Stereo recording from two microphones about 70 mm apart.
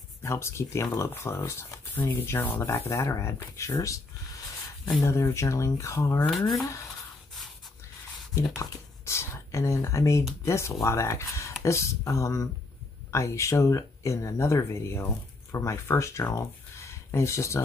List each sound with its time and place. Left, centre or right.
0.2 s speech: left
2.7 s speech: left
5.0 s speech: left
6.3 s speech: centre
8.4 s speech: left